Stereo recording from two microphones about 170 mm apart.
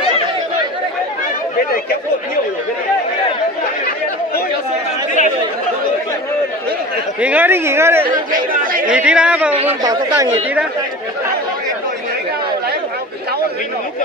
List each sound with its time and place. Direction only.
7.2 s speech: 10° right (ahead or behind)
8.3 s chatter: 55° right (ahead or behind)
8.9 s speech: 5° right (ahead or behind)
9.8 s speech: 25° right (ahead or behind)